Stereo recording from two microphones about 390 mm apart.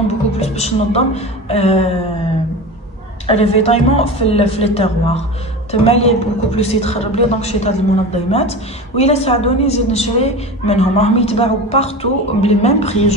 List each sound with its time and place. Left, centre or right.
0.4 s a woman's voice: centre
3.3 s a man's voice: centre